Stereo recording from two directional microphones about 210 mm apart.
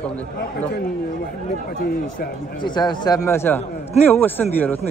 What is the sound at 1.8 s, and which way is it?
Speech, 40° left (ahead or behind).